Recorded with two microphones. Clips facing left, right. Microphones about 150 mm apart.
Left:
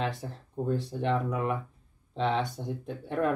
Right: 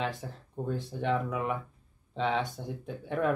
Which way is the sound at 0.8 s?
5° right (ahead or behind).